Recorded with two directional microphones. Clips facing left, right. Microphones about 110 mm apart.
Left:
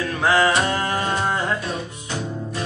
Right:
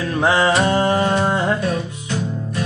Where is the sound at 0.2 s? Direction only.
25° right (ahead or behind).